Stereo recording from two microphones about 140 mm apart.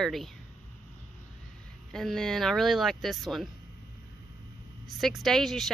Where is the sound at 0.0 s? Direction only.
Centre (ahead or behind).